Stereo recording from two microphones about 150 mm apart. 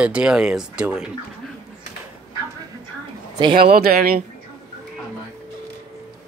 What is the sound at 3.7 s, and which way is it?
Speech, 90° right.